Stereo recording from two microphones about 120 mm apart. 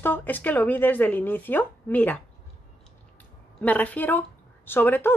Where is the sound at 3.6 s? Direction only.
15° left (ahead or behind).